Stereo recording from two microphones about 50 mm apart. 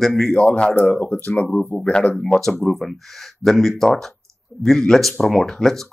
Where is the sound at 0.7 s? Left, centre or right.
Left; by 2.6 s centre.